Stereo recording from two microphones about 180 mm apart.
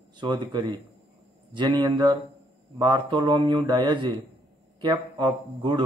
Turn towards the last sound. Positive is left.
turn(degrees=-25)  # may be behind; listen again after turning